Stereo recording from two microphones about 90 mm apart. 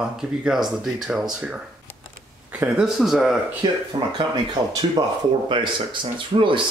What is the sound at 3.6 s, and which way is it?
Speech, 50° right (ahead or behind).